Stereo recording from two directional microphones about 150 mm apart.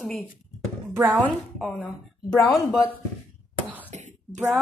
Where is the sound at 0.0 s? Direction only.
Centre (ahead or behind).